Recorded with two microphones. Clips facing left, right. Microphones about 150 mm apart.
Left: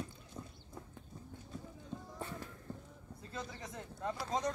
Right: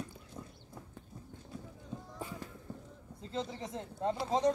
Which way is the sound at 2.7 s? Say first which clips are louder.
Even; 10° right (ahead or behind).